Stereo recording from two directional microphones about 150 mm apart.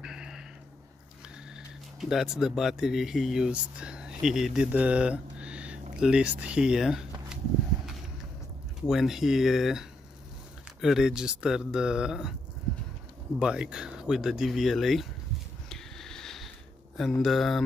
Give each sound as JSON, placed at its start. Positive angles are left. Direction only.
{"t": 0.0, "sound": "a sound", "side_deg": -5}
{"t": 2.0, "sound": "speech", "side_deg": 0}
{"t": 8.8, "sound": "speech", "side_deg": 0}
{"t": 13.4, "sound": "speech", "side_deg": -5}
{"t": 15.7, "sound": "a sound", "side_deg": 5}
{"t": 16.9, "sound": "speech", "side_deg": 0}